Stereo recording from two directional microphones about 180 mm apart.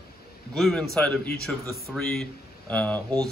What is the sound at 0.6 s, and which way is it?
Speech, centre (ahead or behind).